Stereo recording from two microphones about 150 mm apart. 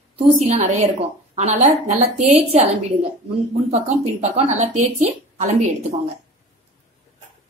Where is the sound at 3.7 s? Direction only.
45° right (ahead or behind).